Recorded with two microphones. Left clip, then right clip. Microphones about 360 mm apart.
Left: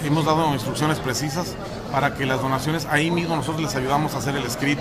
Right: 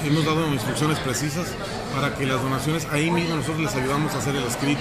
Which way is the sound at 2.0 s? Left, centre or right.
Left.